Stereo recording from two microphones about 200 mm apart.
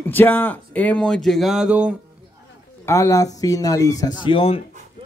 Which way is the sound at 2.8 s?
15° left (ahead or behind).